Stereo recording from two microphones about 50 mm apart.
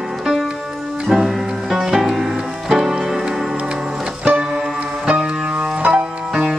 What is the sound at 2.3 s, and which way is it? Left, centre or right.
Music, centre.